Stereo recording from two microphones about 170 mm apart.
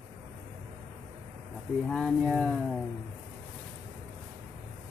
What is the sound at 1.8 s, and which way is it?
Speech, 5° left (ahead or behind).